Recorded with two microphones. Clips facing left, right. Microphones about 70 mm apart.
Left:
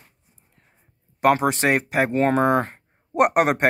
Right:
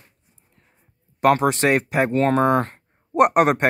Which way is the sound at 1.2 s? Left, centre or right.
Centre.